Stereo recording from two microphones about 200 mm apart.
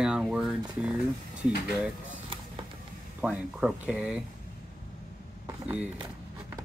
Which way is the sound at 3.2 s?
5° right (ahead or behind).